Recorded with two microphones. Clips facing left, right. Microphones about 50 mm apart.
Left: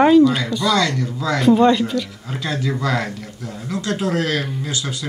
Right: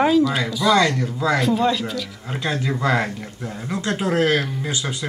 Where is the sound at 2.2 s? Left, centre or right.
Centre.